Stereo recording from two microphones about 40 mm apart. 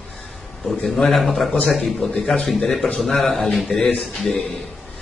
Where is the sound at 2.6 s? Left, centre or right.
Centre.